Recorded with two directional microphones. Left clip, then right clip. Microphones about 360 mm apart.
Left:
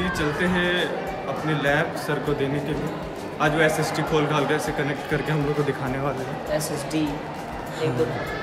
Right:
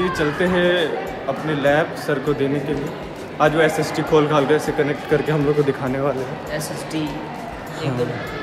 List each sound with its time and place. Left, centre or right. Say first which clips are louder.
0.0 s a man's voice: right 4 dB; centre
3.3 s a man's voice: right 4 dB; centre
6.5 s speech: left 3 dB; centre